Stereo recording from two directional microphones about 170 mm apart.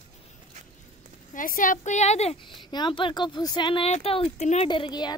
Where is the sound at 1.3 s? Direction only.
55° left (ahead or behind).